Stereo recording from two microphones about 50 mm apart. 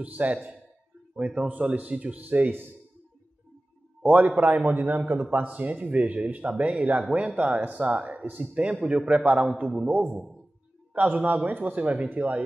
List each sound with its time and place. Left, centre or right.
0.0 s a man's voice: right
4.0 s a man's voice: right
11.0 s a man's voice: right